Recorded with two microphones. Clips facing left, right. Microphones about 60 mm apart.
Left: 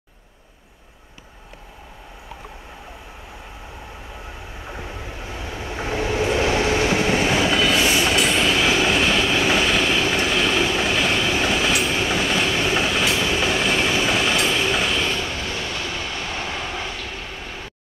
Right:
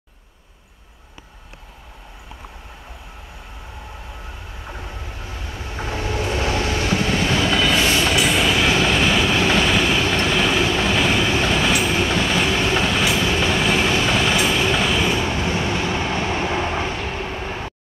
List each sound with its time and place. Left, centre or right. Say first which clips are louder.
4.6 s train: left 1 dB; centre
15.1 s train: right 5 dB; right